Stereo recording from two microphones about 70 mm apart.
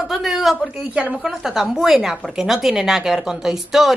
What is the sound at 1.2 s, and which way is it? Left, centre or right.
A woman's voice, centre.